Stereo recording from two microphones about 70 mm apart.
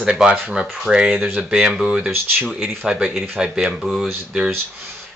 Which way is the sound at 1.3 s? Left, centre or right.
Centre.